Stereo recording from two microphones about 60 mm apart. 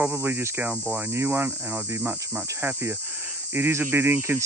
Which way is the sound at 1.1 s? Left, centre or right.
Right.